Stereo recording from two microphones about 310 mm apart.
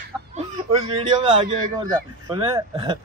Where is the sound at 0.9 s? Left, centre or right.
Centre.